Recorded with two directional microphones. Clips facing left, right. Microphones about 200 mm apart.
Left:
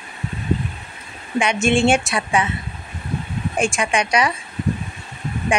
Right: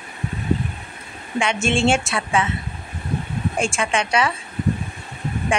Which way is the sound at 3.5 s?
15° left (ahead or behind).